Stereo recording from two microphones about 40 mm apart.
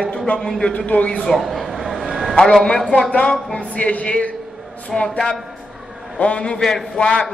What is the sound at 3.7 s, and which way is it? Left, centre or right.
A man's voice, left.